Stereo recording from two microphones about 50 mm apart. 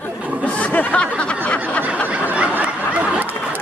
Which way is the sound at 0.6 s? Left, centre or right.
Left.